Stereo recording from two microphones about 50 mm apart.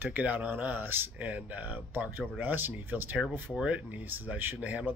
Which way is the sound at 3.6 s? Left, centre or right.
Right.